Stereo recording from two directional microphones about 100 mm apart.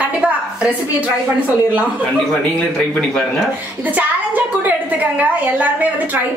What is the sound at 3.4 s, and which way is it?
A woman's voice, 15° right (ahead or behind).